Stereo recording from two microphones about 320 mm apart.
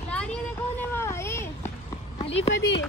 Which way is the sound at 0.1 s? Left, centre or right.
Centre.